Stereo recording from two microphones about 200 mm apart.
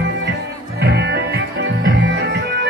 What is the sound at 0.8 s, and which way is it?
Music, 55° right (ahead or behind).